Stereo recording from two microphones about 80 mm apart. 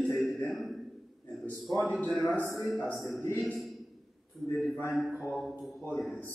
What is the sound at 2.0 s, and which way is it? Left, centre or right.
Speech, left.